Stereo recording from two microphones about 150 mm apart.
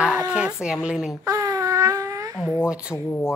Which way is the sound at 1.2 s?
20° right (ahead or behind).